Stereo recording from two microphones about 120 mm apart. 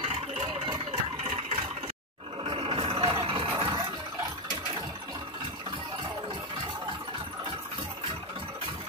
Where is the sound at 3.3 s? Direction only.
45° right (ahead or behind).